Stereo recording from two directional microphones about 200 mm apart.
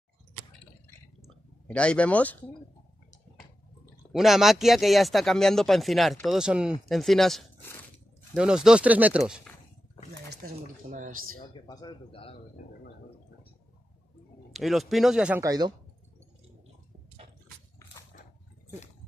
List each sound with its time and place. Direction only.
1.2 s a sound: 5° left (ahead or behind)
4.1 s speech: centre (ahead or behind)
10.4 s speech: 40° right (ahead or behind)
11.5 s a man's voice: 20° left (ahead or behind)
14.5 s speech: centre (ahead or behind)
15.4 s speech: 20° right (ahead or behind)